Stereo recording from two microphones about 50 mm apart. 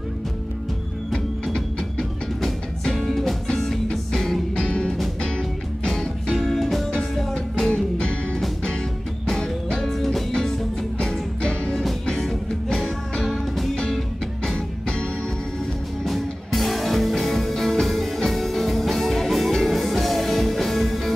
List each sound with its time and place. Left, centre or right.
1.1 s music: centre
5.9 s music: centre
7.7 s music: centre
16.0 s music: centre